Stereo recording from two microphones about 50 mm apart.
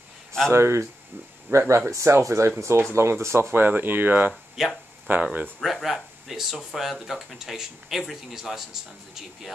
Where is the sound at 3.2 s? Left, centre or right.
Right.